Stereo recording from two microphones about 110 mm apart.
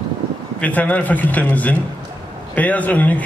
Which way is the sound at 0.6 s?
15° left (ahead or behind).